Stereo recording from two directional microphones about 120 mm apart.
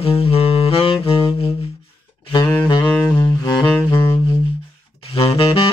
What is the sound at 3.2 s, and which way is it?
Music, 40° left (ahead or behind).